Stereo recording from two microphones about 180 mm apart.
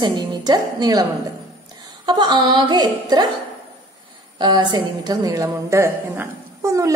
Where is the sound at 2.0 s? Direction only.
25° right (ahead or behind).